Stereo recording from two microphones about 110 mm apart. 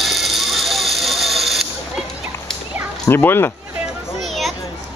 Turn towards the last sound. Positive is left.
turn(degrees=0)  # may be behind; listen again after turning